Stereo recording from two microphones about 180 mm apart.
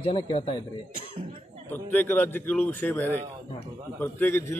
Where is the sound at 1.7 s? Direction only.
10° left (ahead or behind).